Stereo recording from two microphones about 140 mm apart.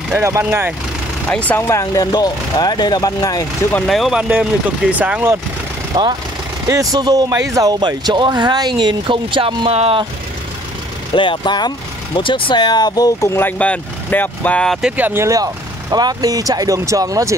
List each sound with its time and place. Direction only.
0.1 s speech: 20° right (ahead or behind)
1.3 s speech: 10° left (ahead or behind); by 3.4 s 25° left (ahead or behind)
3.7 s speech: centre (ahead or behind); by 5.4 s 15° right (ahead or behind)
5.9 s speech: 30° right (ahead or behind)
11.1 s speech: 35° left (ahead or behind); by 17.4 s 25° right (ahead or behind)